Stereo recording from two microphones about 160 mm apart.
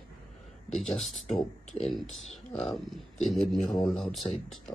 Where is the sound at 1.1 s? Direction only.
40° left (ahead or behind).